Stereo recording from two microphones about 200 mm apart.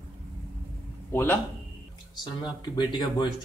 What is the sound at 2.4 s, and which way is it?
Speech, 20° left (ahead or behind).